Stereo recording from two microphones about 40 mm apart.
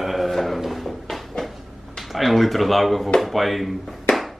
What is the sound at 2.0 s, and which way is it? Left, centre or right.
Speech, centre.